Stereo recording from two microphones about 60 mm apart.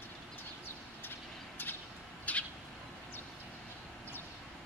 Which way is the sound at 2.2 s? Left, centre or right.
Left.